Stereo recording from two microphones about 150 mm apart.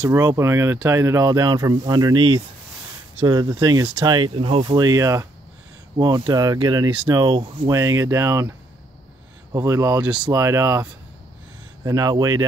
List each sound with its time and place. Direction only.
0.0 s speech: 20° right (ahead or behind)
10.0 s speech: 5° right (ahead or behind)
10.3 s speech: 20° right (ahead or behind)